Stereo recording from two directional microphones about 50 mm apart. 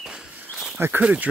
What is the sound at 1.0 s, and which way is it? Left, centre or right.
Speech, right.